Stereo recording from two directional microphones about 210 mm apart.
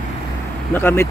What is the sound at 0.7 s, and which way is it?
Speech, 10° left (ahead or behind).